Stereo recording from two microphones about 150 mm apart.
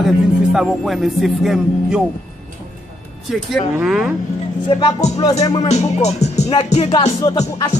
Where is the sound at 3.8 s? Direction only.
5° right (ahead or behind).